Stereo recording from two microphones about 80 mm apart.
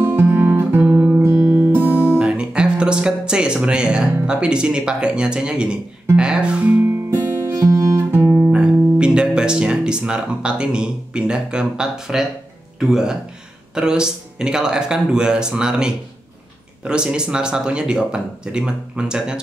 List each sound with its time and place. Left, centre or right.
0.0 s guitar: right
1.1 s speech: right
6.8 s guitar: right
8.5 s speech: centre